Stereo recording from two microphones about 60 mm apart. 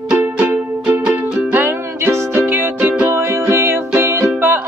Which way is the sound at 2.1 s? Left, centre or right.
Right.